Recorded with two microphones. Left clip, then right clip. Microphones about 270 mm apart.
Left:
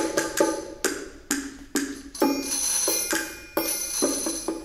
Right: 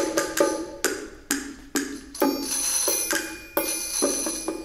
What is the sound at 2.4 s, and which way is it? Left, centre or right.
Music, right.